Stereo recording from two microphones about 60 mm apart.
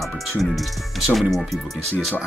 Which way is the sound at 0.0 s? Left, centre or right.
Centre.